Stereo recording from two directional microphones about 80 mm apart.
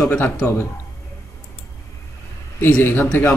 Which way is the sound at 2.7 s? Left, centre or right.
Left.